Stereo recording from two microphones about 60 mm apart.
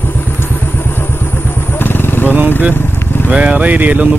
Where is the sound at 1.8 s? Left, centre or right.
Left.